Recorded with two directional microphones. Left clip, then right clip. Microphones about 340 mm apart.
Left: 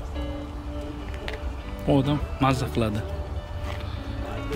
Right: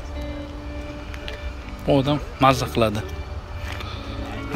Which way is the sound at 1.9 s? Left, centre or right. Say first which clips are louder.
Right 4 dB; centre.